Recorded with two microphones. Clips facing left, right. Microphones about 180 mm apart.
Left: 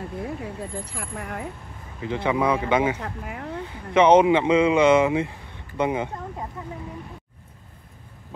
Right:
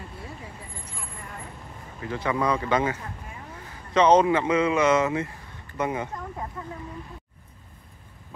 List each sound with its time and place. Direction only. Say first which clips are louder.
0.6 s speech: left 10 dB; 70° left (ahead or behind)
2.0 s speech: left 3 dB; 15° left (ahead or behind)
3.0 s speech: left 7 dB; 75° left (ahead or behind)
3.9 s speech: left 3 dB; 10° left (ahead or behind)